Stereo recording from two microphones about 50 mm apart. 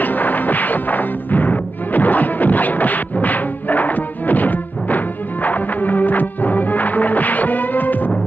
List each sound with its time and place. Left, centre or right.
0.0 s music: left